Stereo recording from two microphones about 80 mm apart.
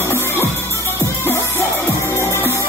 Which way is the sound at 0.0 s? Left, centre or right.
Left.